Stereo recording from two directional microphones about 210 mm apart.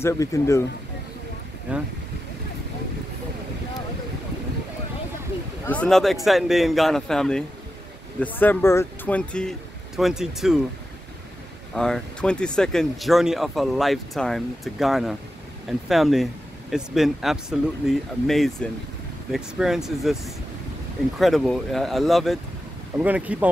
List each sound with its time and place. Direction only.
0.0 s speech: 15° left (ahead or behind)
1.7 s speech: 5° right (ahead or behind)
5.7 s speech: 5° left (ahead or behind)
11.7 s speech: 5° left (ahead or behind)
21.2 s speech: centre (ahead or behind)